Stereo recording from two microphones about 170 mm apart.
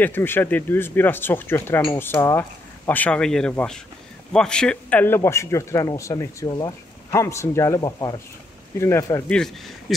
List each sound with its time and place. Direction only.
0.0 s speech: 10° left (ahead or behind)
2.9 s speech: 10° left (ahead or behind)
9.3 s speech: 5° left (ahead or behind)